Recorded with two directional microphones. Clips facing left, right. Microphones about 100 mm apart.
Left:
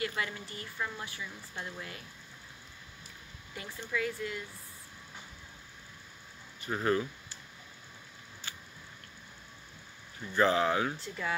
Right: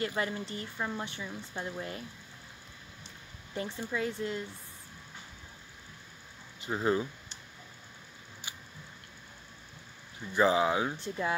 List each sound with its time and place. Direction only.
0.0 s speech: 30° right (ahead or behind)
3.5 s speech: 25° right (ahead or behind)
6.6 s speech: 20° right (ahead or behind)
8.4 s a sound: 15° right (ahead or behind)
10.2 s speech: 15° right (ahead or behind)